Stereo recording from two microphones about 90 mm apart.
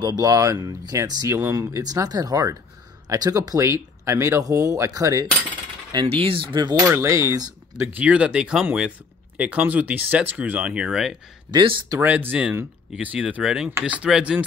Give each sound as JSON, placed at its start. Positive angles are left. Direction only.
{"t": 0.0, "sound": "speech", "side_deg": -45}
{"t": 6.0, "sound": "speech", "side_deg": -85}
{"t": 6.8, "sound": "speech", "side_deg": -30}
{"t": 7.9, "sound": "speech", "side_deg": -15}
{"t": 12.0, "sound": "speech", "side_deg": -20}